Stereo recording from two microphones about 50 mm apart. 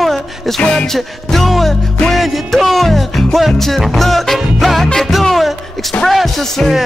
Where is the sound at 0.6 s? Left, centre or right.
Left.